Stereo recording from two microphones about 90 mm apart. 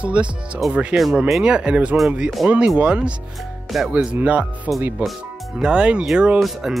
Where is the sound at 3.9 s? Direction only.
15° right (ahead or behind).